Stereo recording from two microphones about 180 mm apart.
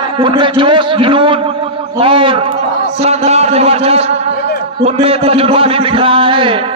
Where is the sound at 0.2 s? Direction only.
25° right (ahead or behind).